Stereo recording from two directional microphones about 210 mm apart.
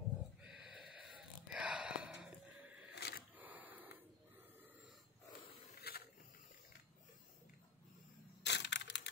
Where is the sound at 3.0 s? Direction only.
50° left (ahead or behind).